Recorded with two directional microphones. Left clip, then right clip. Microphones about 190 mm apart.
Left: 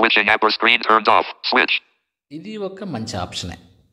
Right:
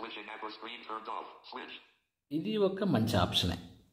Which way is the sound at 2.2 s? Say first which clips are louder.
Left 2 dB; 25° left (ahead or behind).